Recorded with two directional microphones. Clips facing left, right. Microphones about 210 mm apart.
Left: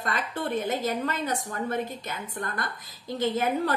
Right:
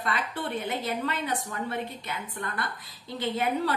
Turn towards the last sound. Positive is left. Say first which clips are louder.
# left 2 dB
turn(degrees=45)  # may be behind; listen again after turning